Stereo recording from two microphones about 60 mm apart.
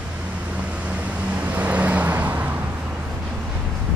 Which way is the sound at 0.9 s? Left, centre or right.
Right.